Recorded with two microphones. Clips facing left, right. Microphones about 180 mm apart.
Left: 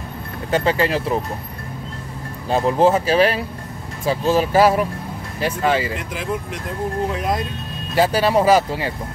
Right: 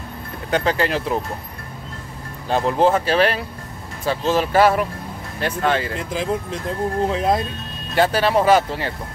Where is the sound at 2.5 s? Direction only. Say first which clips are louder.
Left 1 dB; 5° left (ahead or behind).